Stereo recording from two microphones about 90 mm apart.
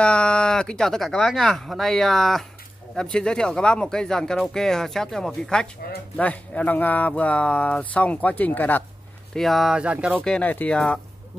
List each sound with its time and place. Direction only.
0.0 s speech: 10° left (ahead or behind)
9.3 s speech: centre (ahead or behind)
9.8 s speech: 15° right (ahead or behind)
10.2 s speech: 10° left (ahead or behind)